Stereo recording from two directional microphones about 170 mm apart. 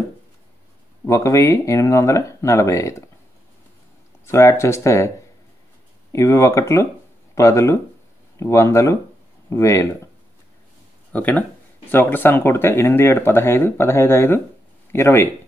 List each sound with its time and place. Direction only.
1.0 s speech: 20° left (ahead or behind)
4.3 s speech: 15° left (ahead or behind)
6.1 s speech: 20° left (ahead or behind)
11.1 s speech: 10° left (ahead or behind)